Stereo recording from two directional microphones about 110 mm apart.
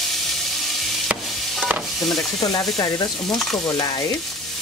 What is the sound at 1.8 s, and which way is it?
Stir, centre (ahead or behind).